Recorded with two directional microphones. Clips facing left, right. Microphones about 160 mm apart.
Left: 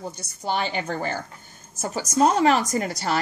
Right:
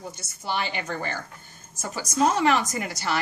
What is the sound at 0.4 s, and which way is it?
A woman's voice, 40° left (ahead or behind).